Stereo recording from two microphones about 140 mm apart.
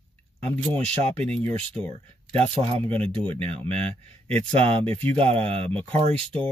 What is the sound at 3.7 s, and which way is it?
Speech, 45° right (ahead or behind).